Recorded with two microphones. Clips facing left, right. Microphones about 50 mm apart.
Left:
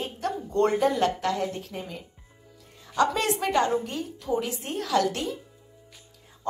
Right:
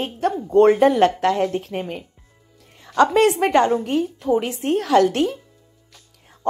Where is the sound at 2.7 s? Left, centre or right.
Right.